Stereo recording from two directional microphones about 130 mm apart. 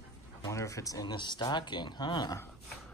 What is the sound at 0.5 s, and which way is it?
Speech, 25° left (ahead or behind).